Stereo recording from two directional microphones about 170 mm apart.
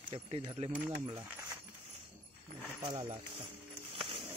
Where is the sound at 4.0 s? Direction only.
30° right (ahead or behind).